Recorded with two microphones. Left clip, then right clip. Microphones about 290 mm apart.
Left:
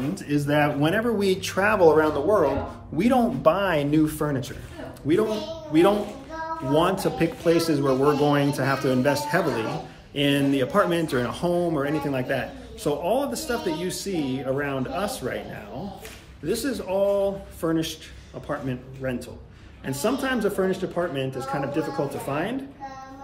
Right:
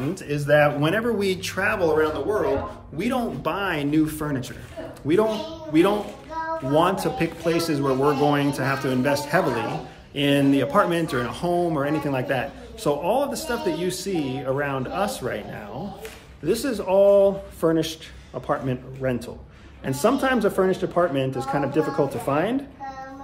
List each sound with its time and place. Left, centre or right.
0.3 s speech: centre
5.7 s speech: centre; by 22.6 s right